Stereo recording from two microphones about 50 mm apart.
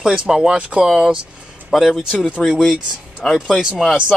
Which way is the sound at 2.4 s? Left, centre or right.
Left.